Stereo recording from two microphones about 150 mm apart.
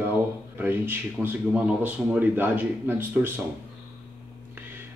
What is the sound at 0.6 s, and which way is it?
Speech, 15° right (ahead or behind).